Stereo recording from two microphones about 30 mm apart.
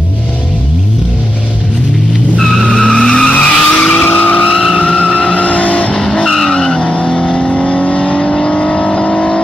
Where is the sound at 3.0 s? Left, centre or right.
Left.